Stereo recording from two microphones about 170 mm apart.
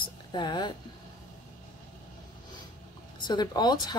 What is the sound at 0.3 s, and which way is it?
Speech, 25° left (ahead or behind).